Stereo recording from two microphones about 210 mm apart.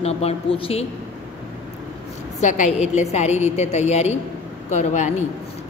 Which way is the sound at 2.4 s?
35° left (ahead or behind).